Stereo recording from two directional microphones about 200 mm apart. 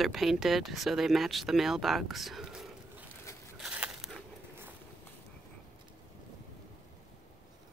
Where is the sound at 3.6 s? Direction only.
5° right (ahead or behind).